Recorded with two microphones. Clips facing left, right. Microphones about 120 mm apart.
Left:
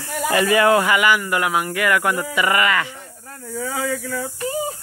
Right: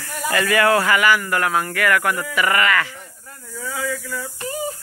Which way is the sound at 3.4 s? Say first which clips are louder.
Left 3 dB; 65° left (ahead or behind).